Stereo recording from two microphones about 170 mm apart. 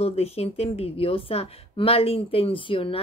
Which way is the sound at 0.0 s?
35° left (ahead or behind).